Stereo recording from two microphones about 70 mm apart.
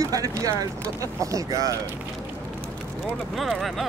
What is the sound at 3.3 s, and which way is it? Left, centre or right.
Speech, centre.